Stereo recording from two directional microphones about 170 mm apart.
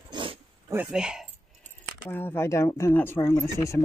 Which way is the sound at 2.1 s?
15° left (ahead or behind).